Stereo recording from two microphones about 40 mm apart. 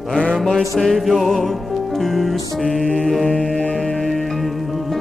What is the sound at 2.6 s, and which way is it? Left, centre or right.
Mantra, left.